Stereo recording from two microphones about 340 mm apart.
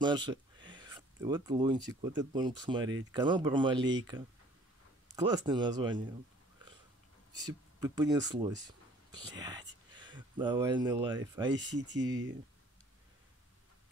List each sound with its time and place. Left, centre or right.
0.0 s speech: centre
7.3 s speech: centre
11.6 s speech: right